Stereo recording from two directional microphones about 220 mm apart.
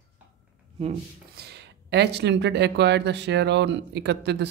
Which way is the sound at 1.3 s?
50° right (ahead or behind).